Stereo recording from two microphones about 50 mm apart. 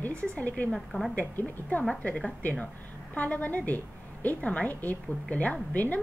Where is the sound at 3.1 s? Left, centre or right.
Left.